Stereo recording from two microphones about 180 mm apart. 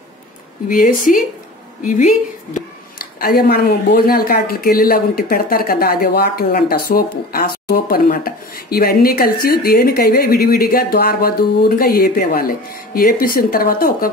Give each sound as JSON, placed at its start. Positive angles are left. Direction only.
{"t": 0.7, "sound": "a woman's voice", "side_deg": 50}
{"t": 3.2, "sound": "speech", "side_deg": 55}